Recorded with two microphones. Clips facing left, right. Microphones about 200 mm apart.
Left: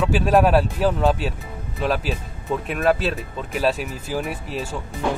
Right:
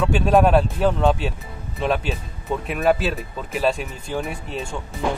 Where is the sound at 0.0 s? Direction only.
Centre (ahead or behind).